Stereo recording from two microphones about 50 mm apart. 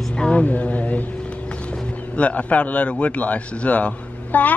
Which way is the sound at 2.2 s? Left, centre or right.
Left.